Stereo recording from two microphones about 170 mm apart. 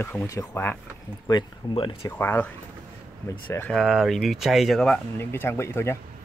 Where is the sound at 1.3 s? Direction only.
25° left (ahead or behind).